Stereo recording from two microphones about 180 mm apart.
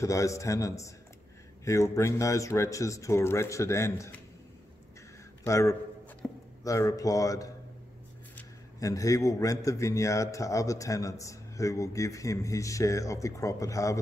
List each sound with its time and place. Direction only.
0.0 s a man's voice: 15° left (ahead or behind)
5.4 s a man's voice: 15° left (ahead or behind)
6.2 s a sound: 5° left (ahead or behind)
6.6 s a man's voice: 15° left (ahead or behind)